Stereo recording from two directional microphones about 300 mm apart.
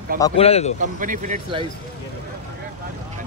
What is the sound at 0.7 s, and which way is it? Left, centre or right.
Speech, right.